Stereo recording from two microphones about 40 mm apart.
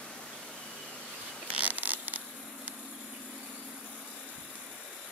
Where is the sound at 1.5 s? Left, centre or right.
Right.